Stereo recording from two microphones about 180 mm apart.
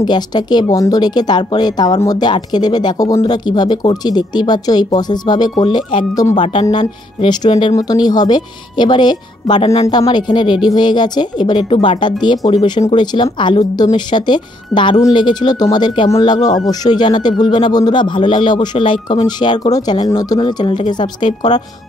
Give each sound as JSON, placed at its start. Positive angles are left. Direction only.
{"t": 0.0, "sound": "speech", "side_deg": 25}